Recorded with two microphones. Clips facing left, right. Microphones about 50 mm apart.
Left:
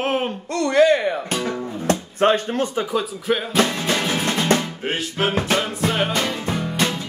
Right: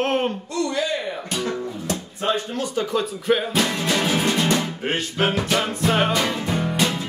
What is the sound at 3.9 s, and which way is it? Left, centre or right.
Music, centre.